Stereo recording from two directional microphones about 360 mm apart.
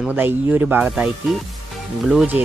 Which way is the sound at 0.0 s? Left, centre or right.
Centre.